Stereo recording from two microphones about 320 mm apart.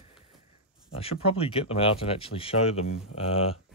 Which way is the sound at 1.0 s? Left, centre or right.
Centre.